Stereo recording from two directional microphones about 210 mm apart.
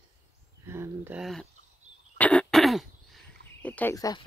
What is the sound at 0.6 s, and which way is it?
Speech, 10° right (ahead or behind).